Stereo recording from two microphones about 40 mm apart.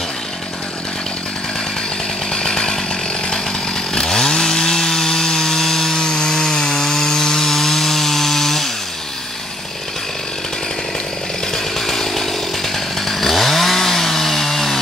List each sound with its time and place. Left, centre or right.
2.3 s chainsaw: centre
3.9 s chainsaw: centre
5.9 s wood: centre
11.5 s chainsaw: centre